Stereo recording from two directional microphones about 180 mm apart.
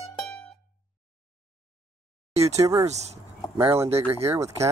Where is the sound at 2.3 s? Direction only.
35° right (ahead or behind).